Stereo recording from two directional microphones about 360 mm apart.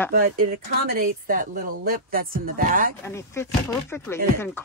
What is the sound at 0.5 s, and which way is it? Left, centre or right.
Speech, right.